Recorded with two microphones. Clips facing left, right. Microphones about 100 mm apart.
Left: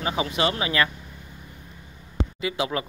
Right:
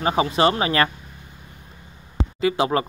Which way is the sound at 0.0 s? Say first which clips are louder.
Right 6 dB; 35° right (ahead or behind).